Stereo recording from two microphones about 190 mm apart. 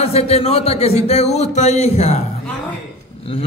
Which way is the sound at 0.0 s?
30° left (ahead or behind).